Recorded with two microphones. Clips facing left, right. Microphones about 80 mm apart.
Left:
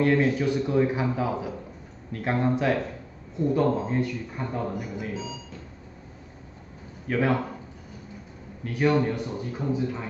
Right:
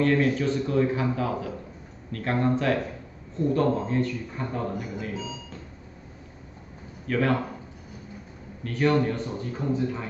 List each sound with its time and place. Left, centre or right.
0.0 s a man's voice: centre
7.1 s a man's voice: centre
8.6 s a man's voice: centre